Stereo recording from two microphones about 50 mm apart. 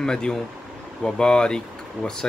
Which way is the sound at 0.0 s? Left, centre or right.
Centre.